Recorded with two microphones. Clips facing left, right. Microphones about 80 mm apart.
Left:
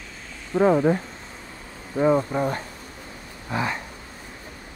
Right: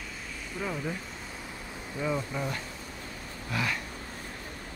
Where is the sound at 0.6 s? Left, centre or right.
Left.